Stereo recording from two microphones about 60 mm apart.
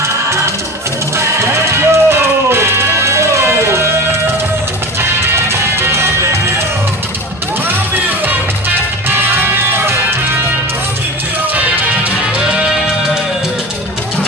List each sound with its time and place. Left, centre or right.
1.1 s music: right
5.3 s music: right
7.9 s music: right
11.5 s music: right